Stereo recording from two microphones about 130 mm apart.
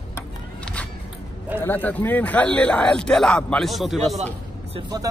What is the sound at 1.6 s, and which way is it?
Speech, 15° left (ahead or behind).